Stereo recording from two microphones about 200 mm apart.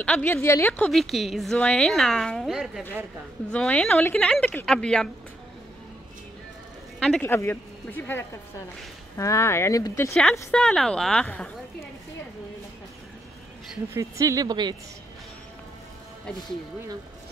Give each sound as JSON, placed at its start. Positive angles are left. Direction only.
{"t": 0.0, "sound": "a woman's voice", "side_deg": 5}
{"t": 3.5, "sound": "a woman's voice", "side_deg": 5}
{"t": 7.0, "sound": "a woman's voice", "side_deg": 5}
{"t": 13.9, "sound": "speech", "side_deg": -15}